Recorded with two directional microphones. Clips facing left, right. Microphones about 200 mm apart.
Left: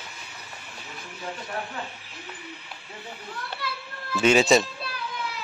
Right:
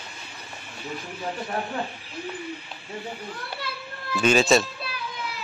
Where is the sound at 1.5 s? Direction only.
35° right (ahead or behind).